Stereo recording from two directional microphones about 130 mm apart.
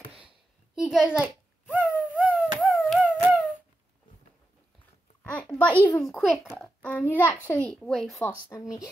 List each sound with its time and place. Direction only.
0.7 s a child's voice: 5° right (ahead or behind)
1.7 s a sound: 5° right (ahead or behind)
5.2 s a sound: 10° left (ahead or behind)
6.0 s a child's voice: centre (ahead or behind)
6.8 s a child's voice: 10° left (ahead or behind)
8.5 s a child's voice: 15° left (ahead or behind)